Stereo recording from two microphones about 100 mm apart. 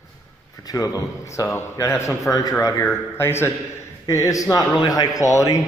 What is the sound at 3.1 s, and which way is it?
A man's voice, 25° left (ahead or behind).